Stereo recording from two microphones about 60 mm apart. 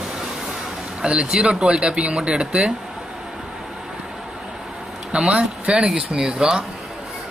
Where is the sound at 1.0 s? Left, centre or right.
Centre.